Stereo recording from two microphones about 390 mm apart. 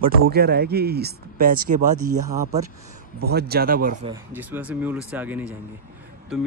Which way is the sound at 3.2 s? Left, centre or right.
Right.